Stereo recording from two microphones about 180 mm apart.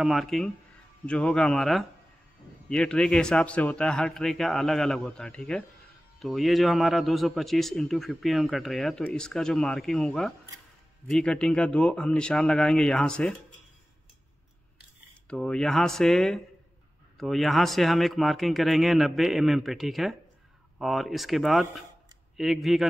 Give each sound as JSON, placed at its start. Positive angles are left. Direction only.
{"t": 0.0, "sound": "a man's voice", "side_deg": 0}
{"t": 15.2, "sound": "a man's voice", "side_deg": 5}